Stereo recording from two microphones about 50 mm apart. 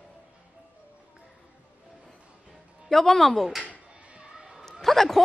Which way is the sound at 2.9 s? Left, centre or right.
Centre.